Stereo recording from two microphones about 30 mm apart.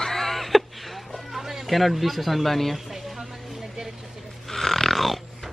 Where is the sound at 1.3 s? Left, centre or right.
Centre.